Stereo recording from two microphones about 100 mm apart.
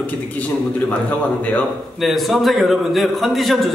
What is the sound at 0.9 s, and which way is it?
Speech, 15° left (ahead or behind).